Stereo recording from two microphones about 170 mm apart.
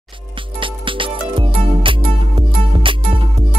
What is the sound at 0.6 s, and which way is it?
Music, 30° right (ahead or behind).